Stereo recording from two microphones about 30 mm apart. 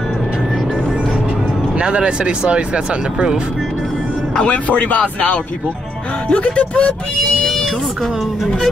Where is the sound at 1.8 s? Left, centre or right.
Right.